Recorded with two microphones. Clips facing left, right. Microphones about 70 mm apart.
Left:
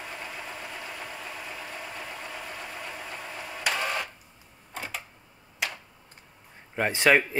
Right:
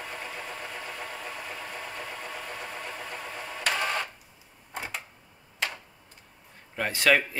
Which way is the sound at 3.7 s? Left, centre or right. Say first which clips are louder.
Right 1 dB; centre.